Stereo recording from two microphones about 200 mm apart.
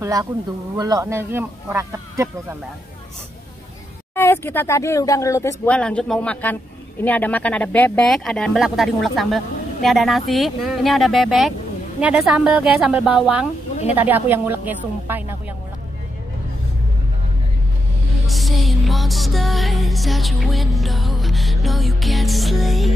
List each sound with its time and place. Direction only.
0.0 s a woman's voice: 15° right (ahead or behind)
4.1 s speech: 10° left (ahead or behind)
9.8 s music: centre (ahead or behind)
12.0 s a woman's voice: 5° right (ahead or behind)
18.2 s music: centre (ahead or behind)